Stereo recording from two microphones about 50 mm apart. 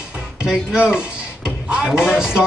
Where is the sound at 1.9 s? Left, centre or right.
Centre.